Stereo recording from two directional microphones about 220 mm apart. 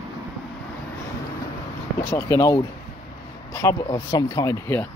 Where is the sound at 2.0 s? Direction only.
15° left (ahead or behind).